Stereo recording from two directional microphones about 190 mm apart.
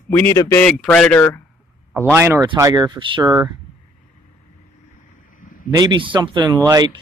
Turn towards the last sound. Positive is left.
turn(degrees=-20)  # may be behind; listen again after turning